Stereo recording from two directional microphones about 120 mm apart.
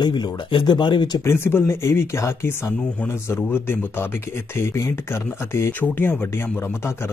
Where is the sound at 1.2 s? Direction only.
20° left (ahead or behind).